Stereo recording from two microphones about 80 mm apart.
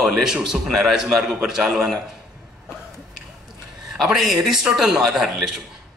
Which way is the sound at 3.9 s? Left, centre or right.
Centre.